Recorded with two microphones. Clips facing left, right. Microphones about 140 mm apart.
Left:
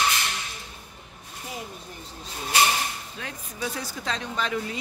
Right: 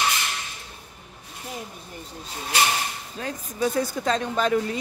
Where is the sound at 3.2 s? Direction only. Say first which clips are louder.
Right 8 dB; 40° right (ahead or behind).